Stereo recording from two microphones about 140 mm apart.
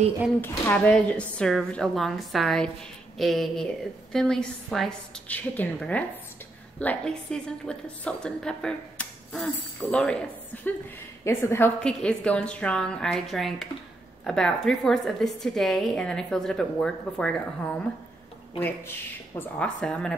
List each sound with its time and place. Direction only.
0.4 s a woman's voice: 10° left (ahead or behind)
11.8 s a woman's voice: 5° left (ahead or behind)